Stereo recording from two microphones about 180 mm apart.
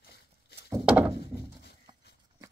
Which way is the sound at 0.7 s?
10° right (ahead or behind).